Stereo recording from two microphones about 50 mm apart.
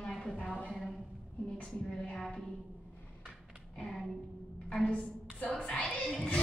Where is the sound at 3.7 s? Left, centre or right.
Centre.